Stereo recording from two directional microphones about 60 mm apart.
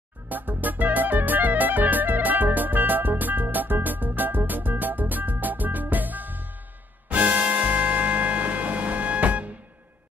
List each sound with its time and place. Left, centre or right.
0.3 s music: right